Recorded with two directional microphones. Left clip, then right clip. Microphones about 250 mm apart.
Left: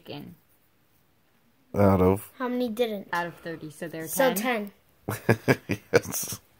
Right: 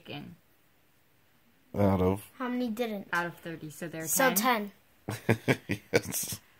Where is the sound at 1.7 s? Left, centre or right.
Centre.